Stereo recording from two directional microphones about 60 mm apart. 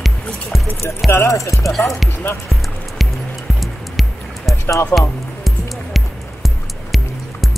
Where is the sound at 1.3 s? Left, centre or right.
Left.